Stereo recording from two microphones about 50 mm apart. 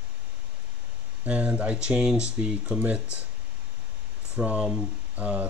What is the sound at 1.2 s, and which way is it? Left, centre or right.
Speech, right.